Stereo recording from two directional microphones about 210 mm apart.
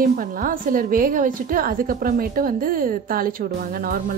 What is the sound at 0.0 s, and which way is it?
A woman's voice, 40° right (ahead or behind).